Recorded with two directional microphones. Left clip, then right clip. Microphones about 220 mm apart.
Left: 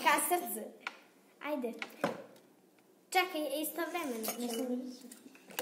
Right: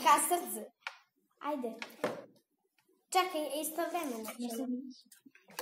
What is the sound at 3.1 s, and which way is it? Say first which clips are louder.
Speech: even; 10° right (ahead or behind).